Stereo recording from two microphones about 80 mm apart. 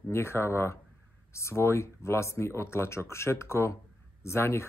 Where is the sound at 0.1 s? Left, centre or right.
Left.